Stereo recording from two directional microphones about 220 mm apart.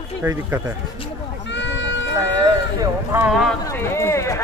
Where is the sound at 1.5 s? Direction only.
55° left (ahead or behind).